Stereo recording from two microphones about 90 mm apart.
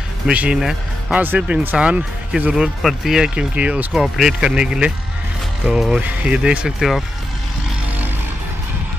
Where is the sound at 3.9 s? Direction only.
5° right (ahead or behind).